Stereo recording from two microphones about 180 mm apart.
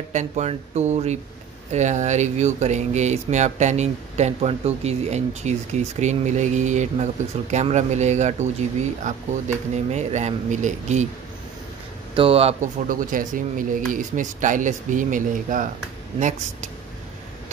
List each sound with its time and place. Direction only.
0.1 s speech: 40° right (ahead or behind)
12.2 s speech: 35° right (ahead or behind)